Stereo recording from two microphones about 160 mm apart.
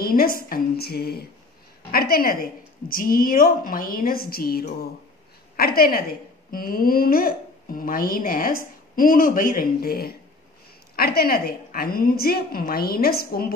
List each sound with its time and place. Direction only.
0.0 s a woman's voice: 65° left (ahead or behind)